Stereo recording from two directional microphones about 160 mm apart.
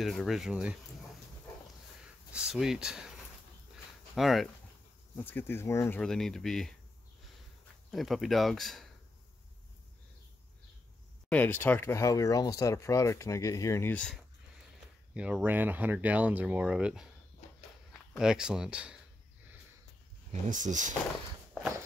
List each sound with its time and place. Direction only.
0.0 s speech: centre (ahead or behind)
2.3 s speech: 5° right (ahead or behind)
4.1 s speech: centre (ahead or behind)
5.1 s speech: 10° left (ahead or behind)
5.9 s speech: 5° left (ahead or behind)
7.9 s speech: centre (ahead or behind)
11.2 s speech: 10° left (ahead or behind)
13.9 s speech: 5° left (ahead or behind)
15.1 s speech: 5° right (ahead or behind)
18.1 s speech: 5° right (ahead or behind)
20.2 s speech: 50° right (ahead or behind)